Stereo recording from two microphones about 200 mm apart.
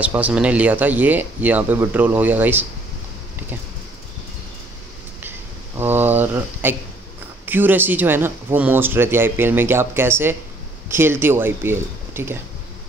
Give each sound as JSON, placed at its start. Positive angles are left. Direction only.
{"t": 0.0, "sound": "speech", "side_deg": -5}
{"t": 5.8, "sound": "a sound", "side_deg": -10}
{"t": 7.4, "sound": "speech", "side_deg": -10}